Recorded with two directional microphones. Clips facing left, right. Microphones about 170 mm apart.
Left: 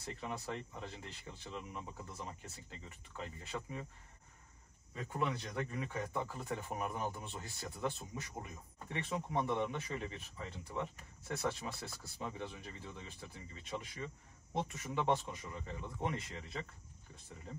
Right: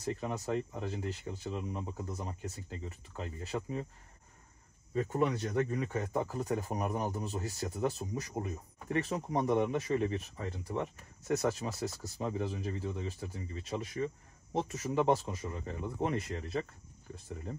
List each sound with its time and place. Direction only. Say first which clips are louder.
0.0 s speech: right 7 dB; 40° right (ahead or behind)
4.9 s speech: right 8 dB; 40° right (ahead or behind)